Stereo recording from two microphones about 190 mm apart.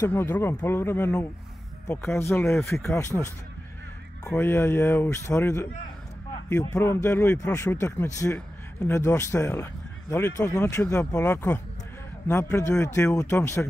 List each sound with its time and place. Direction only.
0.0 s speech: 10° left (ahead or behind)
4.3 s speech: 10° left (ahead or behind)